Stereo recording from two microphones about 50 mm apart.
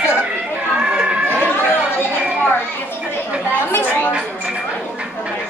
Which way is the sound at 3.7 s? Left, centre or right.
Left.